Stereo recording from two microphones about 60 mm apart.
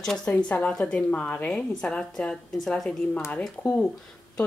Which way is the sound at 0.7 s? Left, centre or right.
Centre.